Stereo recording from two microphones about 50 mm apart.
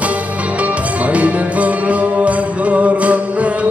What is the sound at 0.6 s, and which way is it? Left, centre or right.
Music, right.